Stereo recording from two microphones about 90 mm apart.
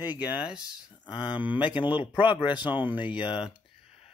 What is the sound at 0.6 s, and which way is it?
Speech, 50° left (ahead or behind).